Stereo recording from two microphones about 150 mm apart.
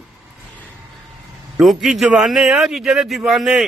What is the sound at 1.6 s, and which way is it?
A man's voice, centre (ahead or behind).